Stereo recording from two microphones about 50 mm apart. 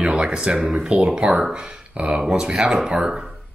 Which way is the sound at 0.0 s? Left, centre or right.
Centre.